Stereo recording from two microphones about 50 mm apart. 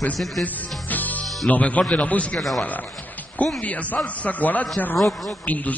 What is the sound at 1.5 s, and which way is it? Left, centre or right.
Speech, left.